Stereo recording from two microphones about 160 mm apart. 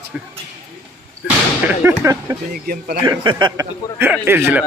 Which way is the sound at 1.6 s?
15° right (ahead or behind).